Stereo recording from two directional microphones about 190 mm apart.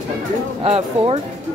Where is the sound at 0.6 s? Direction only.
30° right (ahead or behind).